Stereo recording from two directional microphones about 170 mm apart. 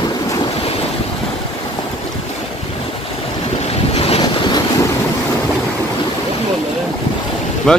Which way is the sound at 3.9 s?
35° left (ahead or behind).